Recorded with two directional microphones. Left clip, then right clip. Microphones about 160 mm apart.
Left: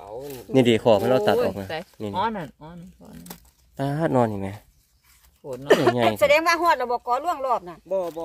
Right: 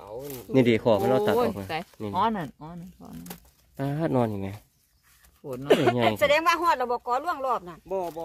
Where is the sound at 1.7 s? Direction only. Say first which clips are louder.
Even; 70° right (ahead or behind).